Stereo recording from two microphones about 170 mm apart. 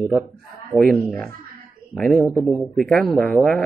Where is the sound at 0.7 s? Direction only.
Centre (ahead or behind).